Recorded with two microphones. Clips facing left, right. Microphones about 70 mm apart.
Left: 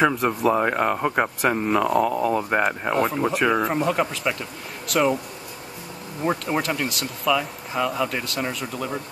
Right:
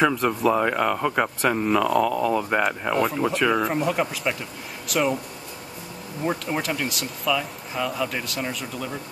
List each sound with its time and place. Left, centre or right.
0.0 s speech: centre
3.6 s speech: centre
6.7 s speech: centre